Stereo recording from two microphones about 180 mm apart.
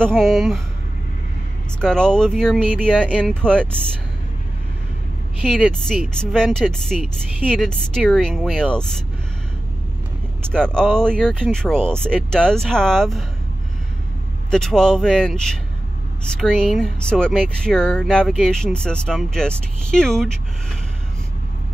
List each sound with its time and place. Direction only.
0.0 s speech: centre (ahead or behind)
1.8 s speech: 5° left (ahead or behind)
5.4 s speech: 5° right (ahead or behind)
10.5 s speech: 5° left (ahead or behind)
14.5 s speech: 5° left (ahead or behind)